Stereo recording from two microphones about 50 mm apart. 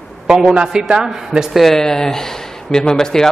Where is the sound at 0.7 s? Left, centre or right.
Centre.